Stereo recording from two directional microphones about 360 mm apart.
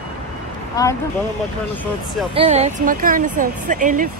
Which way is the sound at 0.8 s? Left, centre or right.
Centre.